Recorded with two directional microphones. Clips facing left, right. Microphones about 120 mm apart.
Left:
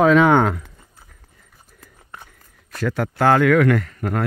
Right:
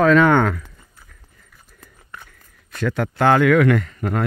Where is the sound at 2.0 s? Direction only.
25° left (ahead or behind).